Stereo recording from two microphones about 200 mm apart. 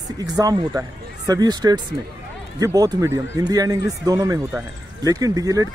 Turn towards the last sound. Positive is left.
turn(degrees=-15)  # may be behind; listen again after turning